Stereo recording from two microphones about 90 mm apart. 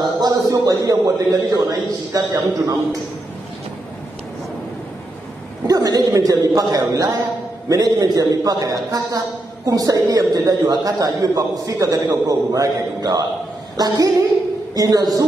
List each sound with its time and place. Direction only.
0.2 s a man's voice: 45° right (ahead or behind)
5.7 s a man's voice: 40° right (ahead or behind)